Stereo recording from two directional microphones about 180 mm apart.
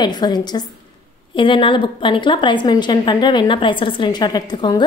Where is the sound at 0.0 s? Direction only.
25° left (ahead or behind).